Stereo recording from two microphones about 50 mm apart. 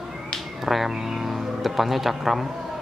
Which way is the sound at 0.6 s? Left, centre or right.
Centre.